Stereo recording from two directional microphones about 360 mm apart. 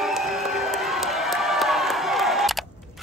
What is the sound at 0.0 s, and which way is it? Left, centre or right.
Crowd, centre.